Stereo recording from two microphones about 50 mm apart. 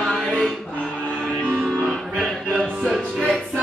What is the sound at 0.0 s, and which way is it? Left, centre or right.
Music, centre.